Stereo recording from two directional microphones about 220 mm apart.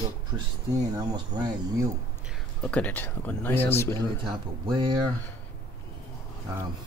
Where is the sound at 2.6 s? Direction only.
5° left (ahead or behind).